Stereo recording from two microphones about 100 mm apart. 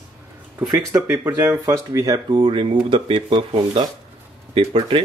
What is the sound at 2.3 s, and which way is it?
Speech, 55° right (ahead or behind).